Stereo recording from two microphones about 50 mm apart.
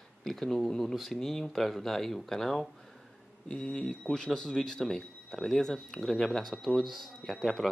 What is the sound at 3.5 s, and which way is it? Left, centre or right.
Speech, left.